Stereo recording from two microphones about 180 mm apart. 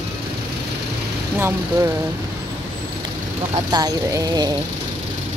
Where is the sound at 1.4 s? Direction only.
15° right (ahead or behind).